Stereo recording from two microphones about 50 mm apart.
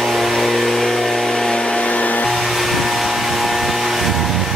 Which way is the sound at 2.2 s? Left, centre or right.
Centre.